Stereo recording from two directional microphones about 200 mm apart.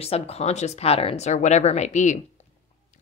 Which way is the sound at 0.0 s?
30° left (ahead or behind).